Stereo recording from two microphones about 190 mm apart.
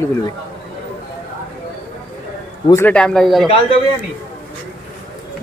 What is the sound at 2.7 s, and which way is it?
Speech, 10° left (ahead or behind).